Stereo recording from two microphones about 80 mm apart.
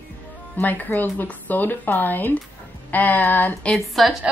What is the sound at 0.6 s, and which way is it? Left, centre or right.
A woman's voice, left.